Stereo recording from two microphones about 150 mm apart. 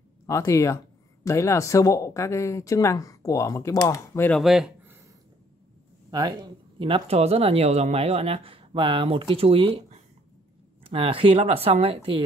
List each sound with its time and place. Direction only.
0.3 s speech: 20° left (ahead or behind)
4.3 s speech: centre (ahead or behind)
6.0 s speech: 25° right (ahead or behind)